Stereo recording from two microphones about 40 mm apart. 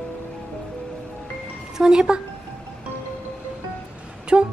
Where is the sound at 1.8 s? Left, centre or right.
Centre.